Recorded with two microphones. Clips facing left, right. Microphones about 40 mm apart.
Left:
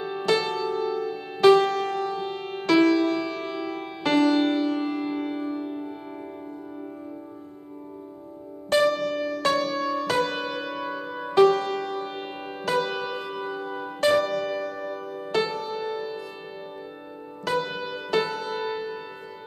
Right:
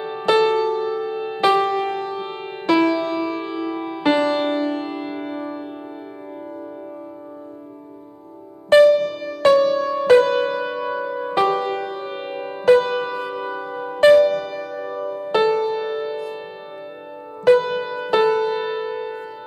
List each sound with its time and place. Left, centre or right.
0.3 s music: centre
8.8 s music: centre
10.0 s music: right
10.3 s music: centre
15.3 s music: centre
17.6 s music: centre